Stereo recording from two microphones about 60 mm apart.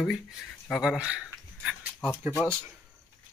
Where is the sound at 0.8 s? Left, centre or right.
Centre.